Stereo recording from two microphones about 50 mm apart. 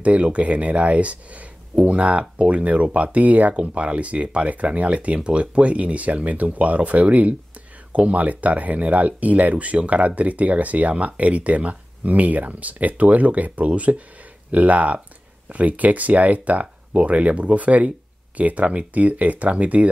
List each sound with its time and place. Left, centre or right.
0.0 s speech: right